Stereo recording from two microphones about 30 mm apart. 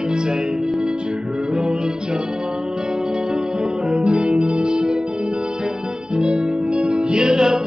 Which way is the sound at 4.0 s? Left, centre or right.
Right.